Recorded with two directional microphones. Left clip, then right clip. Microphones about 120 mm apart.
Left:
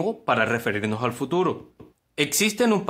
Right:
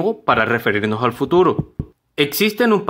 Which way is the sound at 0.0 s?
15° right (ahead or behind).